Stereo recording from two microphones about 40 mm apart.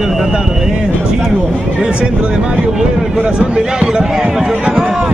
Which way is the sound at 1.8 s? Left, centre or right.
Right.